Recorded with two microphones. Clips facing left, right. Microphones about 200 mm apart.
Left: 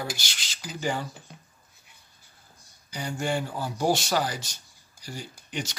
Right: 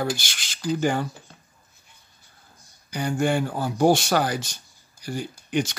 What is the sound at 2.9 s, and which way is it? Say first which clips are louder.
Speech: right 6 dB; 55° right (ahead or behind).